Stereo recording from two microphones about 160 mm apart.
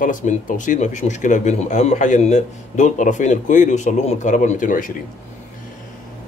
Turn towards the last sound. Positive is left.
turn(degrees=55)  # may be behind; listen again after turning